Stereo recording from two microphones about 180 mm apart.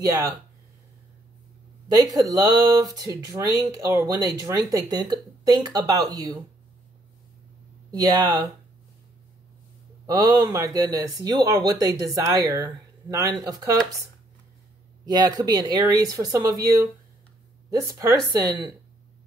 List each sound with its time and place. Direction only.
2.1 s speech: 20° right (ahead or behind)
7.9 s speech: 20° right (ahead or behind)
10.0 s speech: 20° right (ahead or behind)
15.0 s speech: 20° right (ahead or behind)